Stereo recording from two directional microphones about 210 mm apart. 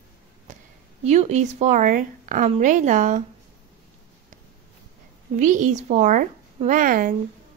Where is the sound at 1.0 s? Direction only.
30° right (ahead or behind).